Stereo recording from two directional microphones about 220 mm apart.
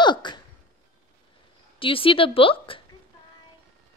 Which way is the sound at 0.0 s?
20° left (ahead or behind).